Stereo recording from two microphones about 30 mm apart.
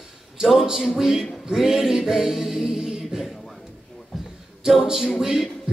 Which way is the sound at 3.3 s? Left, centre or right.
Centre.